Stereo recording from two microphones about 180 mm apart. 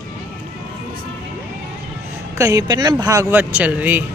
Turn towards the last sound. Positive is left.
turn(degrees=-10)  # may be behind; listen again after turning